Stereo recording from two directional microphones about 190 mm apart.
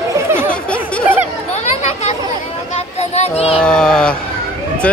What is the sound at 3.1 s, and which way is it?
Speech, 35° left (ahead or behind).